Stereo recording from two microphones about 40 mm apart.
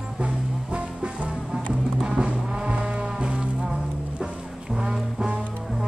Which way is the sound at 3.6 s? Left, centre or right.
Centre.